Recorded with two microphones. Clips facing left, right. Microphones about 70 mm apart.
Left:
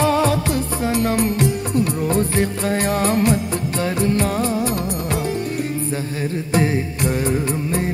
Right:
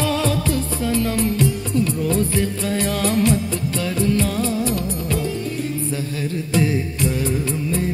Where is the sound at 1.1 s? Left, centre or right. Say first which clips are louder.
Left 1 dB; left.